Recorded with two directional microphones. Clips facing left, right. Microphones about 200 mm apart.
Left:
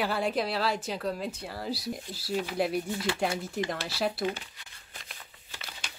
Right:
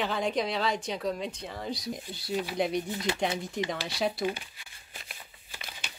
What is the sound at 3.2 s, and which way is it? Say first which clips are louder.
A woman's voice: even; 5° left (ahead or behind).